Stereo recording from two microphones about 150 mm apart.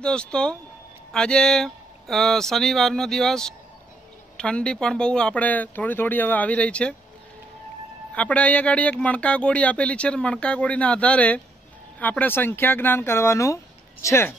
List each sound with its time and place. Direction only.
0.0 s speech: 5° left (ahead or behind)
8.1 s speech: 10° left (ahead or behind)